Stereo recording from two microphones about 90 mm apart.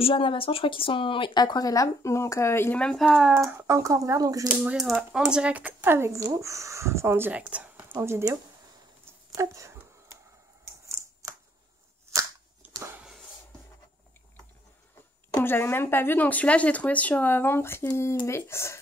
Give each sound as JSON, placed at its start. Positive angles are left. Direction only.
{"t": 0.0, "sound": "speech", "side_deg": 75}
{"t": 2.8, "sound": "speech", "side_deg": 5}
{"t": 3.4, "sound": "speech", "side_deg": -30}
{"t": 4.5, "sound": "speech", "side_deg": -5}
{"t": 7.3, "sound": "speech", "side_deg": -15}
{"t": 8.0, "sound": "speech", "side_deg": -30}
{"t": 9.3, "sound": "a sound", "side_deg": -35}
{"t": 15.4, "sound": "speech", "side_deg": 25}